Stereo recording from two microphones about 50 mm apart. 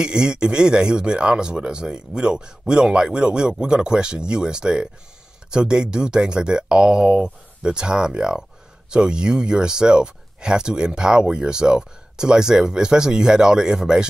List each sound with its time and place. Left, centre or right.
0.0 s speech: centre